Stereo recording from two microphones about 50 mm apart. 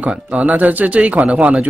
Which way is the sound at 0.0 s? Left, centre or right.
Right.